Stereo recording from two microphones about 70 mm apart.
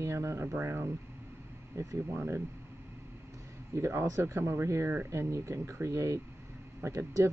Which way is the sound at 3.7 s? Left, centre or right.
Right.